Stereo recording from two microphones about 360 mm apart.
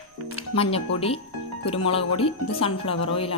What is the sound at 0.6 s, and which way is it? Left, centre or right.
A woman's voice, centre.